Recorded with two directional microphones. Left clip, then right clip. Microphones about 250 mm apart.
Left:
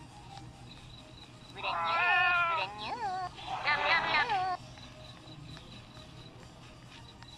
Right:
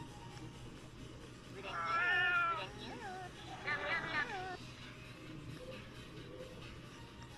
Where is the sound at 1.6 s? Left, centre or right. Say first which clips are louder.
Left 7 dB; centre.